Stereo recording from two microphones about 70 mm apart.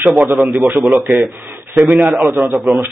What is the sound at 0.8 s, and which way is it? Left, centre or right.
A man's voice, right.